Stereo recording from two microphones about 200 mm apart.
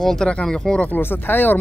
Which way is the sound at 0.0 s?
Centre (ahead or behind).